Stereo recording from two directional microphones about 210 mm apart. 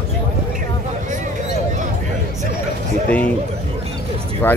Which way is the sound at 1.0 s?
35° right (ahead or behind).